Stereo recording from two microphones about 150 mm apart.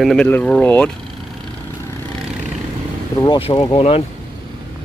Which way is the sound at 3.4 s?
40° left (ahead or behind).